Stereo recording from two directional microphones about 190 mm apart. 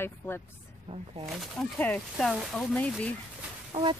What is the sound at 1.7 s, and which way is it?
Speech, 10° left (ahead or behind).